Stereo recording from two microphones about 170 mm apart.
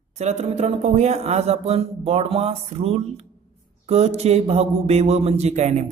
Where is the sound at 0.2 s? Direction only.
40° right (ahead or behind).